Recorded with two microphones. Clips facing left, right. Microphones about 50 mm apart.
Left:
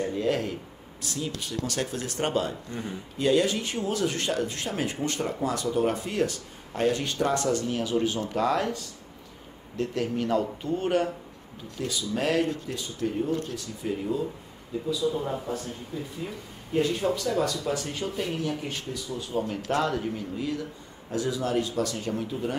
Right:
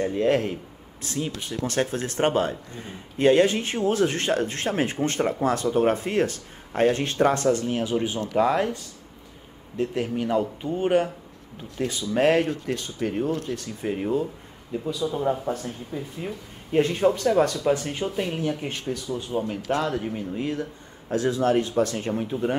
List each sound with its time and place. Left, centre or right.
0.0 s speech: right
9.8 s speech: centre
11.8 s speech: right
12.6 s speech: right
17.6 s speech: right
19.5 s a man's voice: centre
20.2 s speech: right